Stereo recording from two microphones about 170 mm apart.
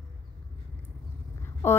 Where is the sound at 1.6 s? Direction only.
15° left (ahead or behind).